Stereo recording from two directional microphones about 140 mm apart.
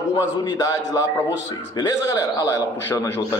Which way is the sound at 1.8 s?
25° left (ahead or behind).